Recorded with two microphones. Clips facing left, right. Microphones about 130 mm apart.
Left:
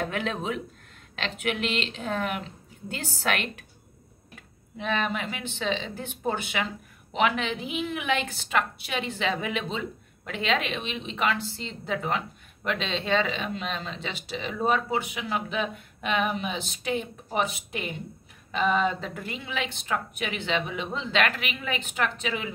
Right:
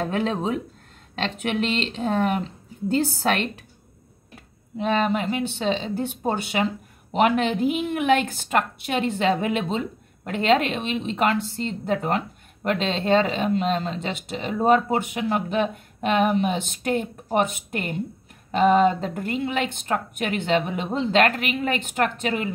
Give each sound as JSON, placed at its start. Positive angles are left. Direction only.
{"t": 0.0, "sound": "speech", "side_deg": -35}
{"t": 4.7, "sound": "speech", "side_deg": -35}